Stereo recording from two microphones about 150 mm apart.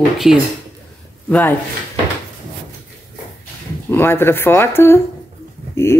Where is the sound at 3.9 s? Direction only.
15° left (ahead or behind).